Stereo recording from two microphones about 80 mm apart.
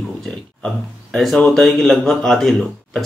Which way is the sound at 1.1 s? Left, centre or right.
Centre.